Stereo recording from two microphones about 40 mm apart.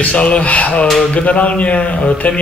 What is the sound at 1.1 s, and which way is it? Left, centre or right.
Speech, left.